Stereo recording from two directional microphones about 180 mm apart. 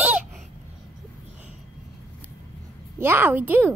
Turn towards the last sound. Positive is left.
turn(degrees=-10)  # may be behind; listen again after turning